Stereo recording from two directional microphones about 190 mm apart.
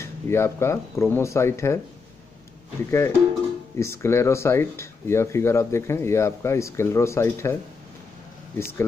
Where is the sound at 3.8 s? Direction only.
15° left (ahead or behind).